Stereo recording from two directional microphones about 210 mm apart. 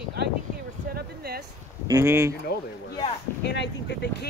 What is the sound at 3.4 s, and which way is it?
Speech, 55° left (ahead or behind).